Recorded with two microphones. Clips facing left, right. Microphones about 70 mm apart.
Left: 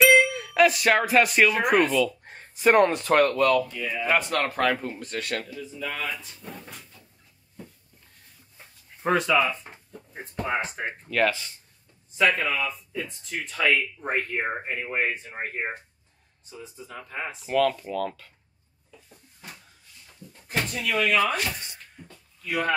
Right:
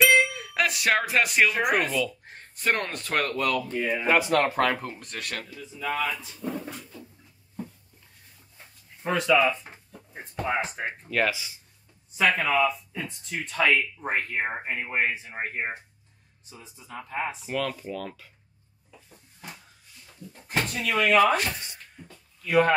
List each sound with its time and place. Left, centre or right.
0.0 s speech: centre
3.6 s speech: right
4.1 s speech: centre
5.8 s speech: right
6.1 s speech: centre
9.4 s speech: centre
20.6 s speech: centre
21.5 s a sound: centre
22.5 s speech: right